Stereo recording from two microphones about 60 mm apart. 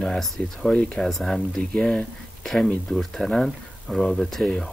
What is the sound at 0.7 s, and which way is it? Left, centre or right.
Speech, centre.